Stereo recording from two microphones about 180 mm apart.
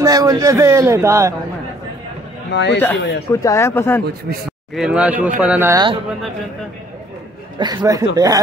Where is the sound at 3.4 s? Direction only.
15° left (ahead or behind).